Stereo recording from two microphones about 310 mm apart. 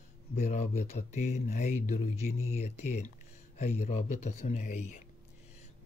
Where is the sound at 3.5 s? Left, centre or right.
Left.